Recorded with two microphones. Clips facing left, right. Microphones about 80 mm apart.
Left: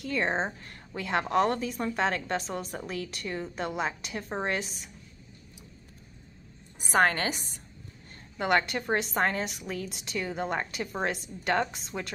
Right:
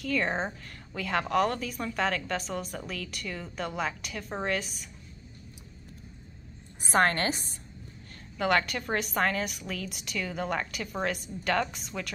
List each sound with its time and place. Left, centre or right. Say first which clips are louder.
0.0 s a woman's voice: even; left
8.4 s a woman's voice: even; left